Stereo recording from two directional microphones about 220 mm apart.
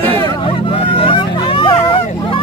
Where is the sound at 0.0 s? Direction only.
10° left (ahead or behind).